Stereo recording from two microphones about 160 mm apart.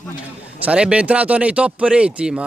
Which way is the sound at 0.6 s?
5° right (ahead or behind).